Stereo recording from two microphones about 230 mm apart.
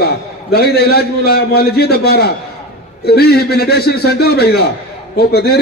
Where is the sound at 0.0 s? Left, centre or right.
Left.